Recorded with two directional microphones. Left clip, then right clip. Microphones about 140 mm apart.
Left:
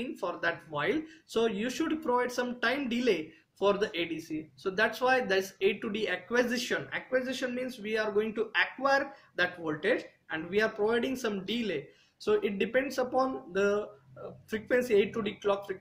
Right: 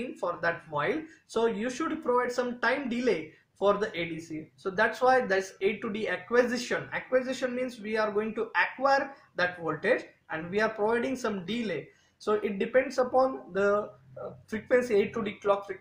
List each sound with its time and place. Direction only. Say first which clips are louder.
0.1 s speech: right 3 dB; 10° left (ahead or behind)